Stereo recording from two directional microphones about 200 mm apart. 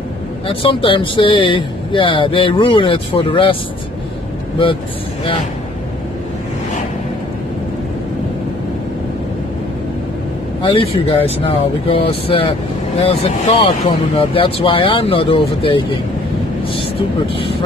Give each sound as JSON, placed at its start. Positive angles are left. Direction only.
{"t": 0.5, "sound": "speech", "side_deg": 25}
{"t": 10.6, "sound": "speech", "side_deg": 25}